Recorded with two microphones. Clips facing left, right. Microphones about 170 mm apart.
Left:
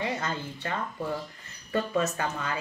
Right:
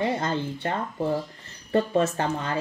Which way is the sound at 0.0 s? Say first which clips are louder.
Right 6 dB; 30° right (ahead or behind).